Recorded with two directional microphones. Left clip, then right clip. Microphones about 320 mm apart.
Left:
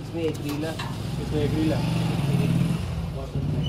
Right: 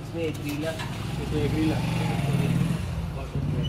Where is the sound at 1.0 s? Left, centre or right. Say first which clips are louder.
Left 4 dB; centre.